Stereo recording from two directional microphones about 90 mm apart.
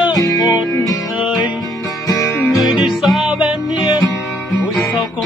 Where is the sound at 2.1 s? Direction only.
40° left (ahead or behind).